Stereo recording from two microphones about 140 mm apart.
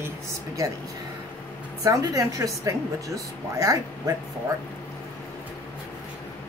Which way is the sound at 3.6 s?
25° right (ahead or behind).